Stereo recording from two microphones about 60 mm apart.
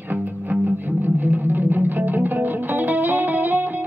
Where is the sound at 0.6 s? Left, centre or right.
Right.